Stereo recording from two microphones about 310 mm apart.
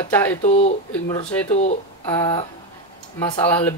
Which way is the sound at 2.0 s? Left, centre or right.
Centre.